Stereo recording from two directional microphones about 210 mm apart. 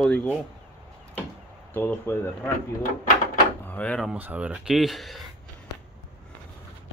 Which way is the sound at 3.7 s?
5° left (ahead or behind).